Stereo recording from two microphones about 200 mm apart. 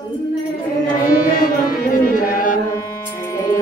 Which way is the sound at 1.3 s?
45° left (ahead or behind).